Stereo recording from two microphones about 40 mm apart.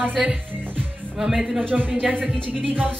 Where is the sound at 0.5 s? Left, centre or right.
Right.